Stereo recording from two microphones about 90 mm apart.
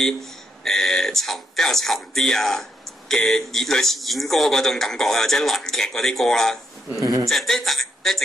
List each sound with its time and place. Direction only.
0.7 s a man's voice: 5° left (ahead or behind)
7.0 s speech: 40° right (ahead or behind)
7.2 s a man's voice: 5° left (ahead or behind)